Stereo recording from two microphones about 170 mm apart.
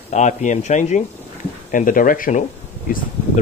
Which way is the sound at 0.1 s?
45° left (ahead or behind).